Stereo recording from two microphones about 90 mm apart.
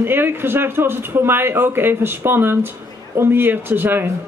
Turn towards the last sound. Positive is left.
turn(degrees=-25)  # may be behind; listen again after turning